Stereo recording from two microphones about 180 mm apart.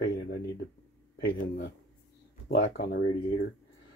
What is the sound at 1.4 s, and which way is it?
Speech, 65° left (ahead or behind).